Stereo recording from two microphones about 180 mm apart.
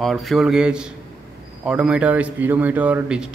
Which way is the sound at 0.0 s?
Centre (ahead or behind).